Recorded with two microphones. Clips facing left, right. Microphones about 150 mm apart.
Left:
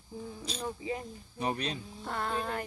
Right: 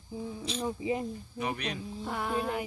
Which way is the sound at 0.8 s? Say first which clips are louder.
Right 5 dB; 20° right (ahead or behind).